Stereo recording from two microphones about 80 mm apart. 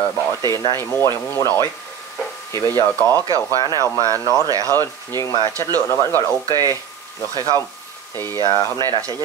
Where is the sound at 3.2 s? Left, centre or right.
Right.